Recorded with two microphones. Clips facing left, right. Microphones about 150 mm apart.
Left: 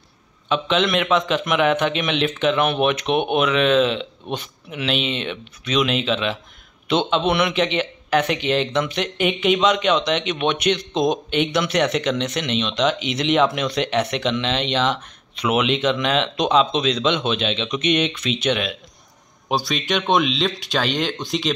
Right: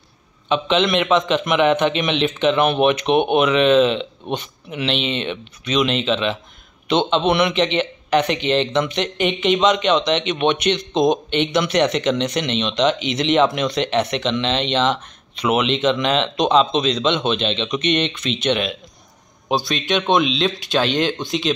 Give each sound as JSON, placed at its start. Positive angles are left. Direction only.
{"t": 0.5, "sound": "a man's voice", "side_deg": 0}